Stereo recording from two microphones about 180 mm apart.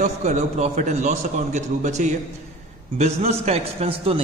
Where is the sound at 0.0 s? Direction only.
40° right (ahead or behind).